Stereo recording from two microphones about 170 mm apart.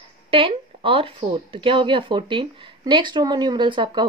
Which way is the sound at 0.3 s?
30° right (ahead or behind).